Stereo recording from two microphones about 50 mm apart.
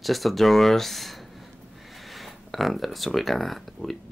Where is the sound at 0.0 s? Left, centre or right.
Centre.